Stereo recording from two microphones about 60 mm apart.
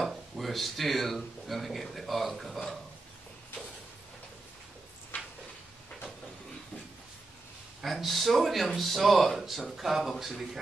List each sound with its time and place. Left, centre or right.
0.0 s speech: centre
7.8 s speech: centre